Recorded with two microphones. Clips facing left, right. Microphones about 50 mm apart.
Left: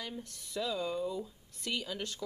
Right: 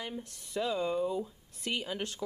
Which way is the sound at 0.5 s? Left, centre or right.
Right.